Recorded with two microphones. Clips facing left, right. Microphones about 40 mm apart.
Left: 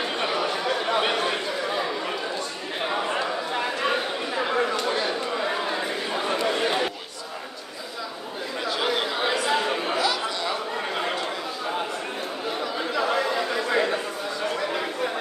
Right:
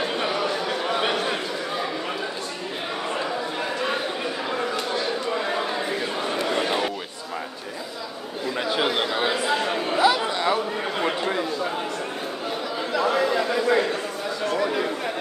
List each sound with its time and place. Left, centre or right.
0.0 s a sound: centre
3.2 s a sound: centre
6.4 s chatter: centre
8.8 s chatter: centre
9.9 s chatter: centre
12.9 s chatter: centre